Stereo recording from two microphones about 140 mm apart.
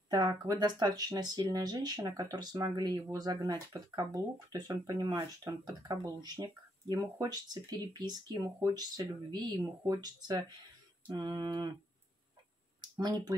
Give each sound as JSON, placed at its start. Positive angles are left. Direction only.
{"t": 0.1, "sound": "speech", "side_deg": -25}
{"t": 11.1, "sound": "a sound", "side_deg": -30}
{"t": 13.0, "sound": "speech", "side_deg": -30}